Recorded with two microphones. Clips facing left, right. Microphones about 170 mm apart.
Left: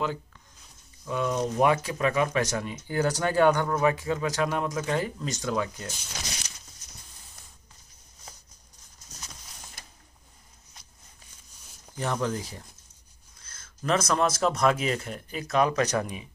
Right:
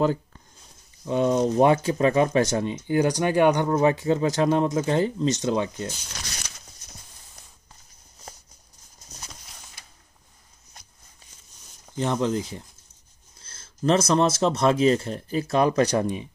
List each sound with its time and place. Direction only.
0.0 s speech: 40° right (ahead or behind)
1.0 s speech: 25° right (ahead or behind)
12.0 s speech: 20° right (ahead or behind)